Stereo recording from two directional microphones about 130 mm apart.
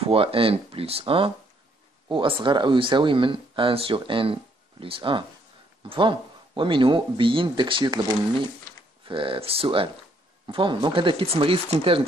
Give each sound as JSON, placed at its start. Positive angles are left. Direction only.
{"t": 0.0, "sound": "speech", "side_deg": -45}
{"t": 9.0, "sound": "speech", "side_deg": -40}